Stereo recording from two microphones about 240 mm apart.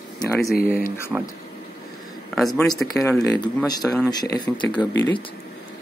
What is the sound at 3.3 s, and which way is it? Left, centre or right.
Speech, centre.